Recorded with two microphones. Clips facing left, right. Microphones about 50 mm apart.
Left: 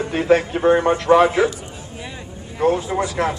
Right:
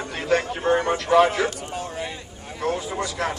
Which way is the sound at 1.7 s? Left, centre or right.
Right.